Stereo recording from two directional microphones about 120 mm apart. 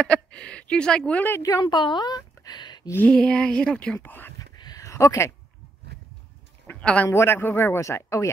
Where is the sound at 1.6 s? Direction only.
40° left (ahead or behind).